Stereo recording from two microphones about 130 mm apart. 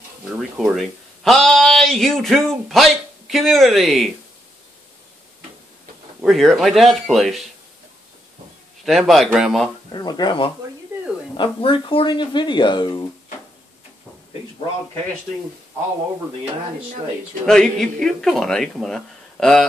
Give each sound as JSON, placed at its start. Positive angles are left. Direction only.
{"t": 0.3, "sound": "speech", "side_deg": -5}
{"t": 6.2, "sound": "speech", "side_deg": 0}
{"t": 8.8, "sound": "speech", "side_deg": 0}
{"t": 9.9, "sound": "speech", "side_deg": 35}
{"t": 17.5, "sound": "speech", "side_deg": 5}